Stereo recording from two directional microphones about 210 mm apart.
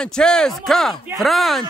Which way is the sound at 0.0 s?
5° left (ahead or behind).